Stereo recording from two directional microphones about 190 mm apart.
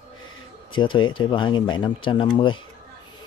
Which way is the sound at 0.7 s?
25° left (ahead or behind).